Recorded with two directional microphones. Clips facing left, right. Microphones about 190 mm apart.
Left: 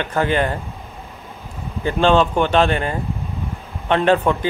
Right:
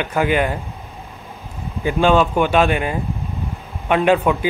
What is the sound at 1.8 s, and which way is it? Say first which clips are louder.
Speech: even; 10° right (ahead or behind).